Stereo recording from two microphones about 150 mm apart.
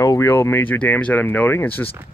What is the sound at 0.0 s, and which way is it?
Speech, 20° left (ahead or behind).